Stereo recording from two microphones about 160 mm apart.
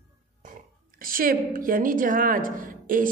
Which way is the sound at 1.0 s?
60° right (ahead or behind).